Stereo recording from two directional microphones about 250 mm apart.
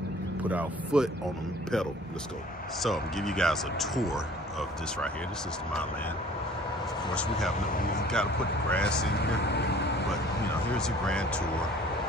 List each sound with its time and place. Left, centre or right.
0.5 s speech: centre
2.8 s speech: centre
7.2 s speech: centre
9.2 s speech: left
10.8 s speech: centre